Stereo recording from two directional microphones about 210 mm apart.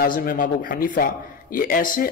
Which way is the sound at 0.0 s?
40° left (ahead or behind).